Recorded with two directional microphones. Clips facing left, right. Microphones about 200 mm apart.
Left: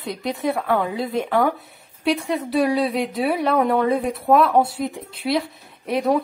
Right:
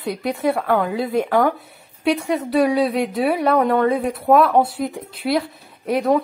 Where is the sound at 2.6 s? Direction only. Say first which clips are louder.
Right 2 dB; centre (ahead or behind).